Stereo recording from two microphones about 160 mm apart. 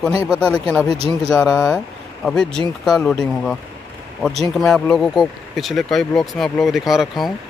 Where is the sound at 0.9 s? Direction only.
40° right (ahead or behind).